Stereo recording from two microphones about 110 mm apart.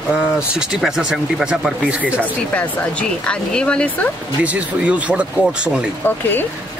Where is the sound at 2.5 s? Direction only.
10° left (ahead or behind).